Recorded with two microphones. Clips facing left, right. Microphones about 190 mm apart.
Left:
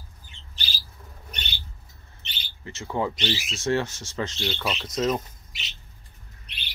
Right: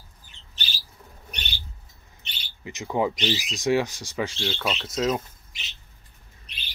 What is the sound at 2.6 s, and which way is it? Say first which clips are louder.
Speech: right 3 dB; 15° right (ahead or behind).